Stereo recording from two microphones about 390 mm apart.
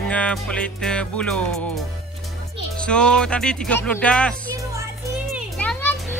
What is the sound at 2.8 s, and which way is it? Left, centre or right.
Speech, centre.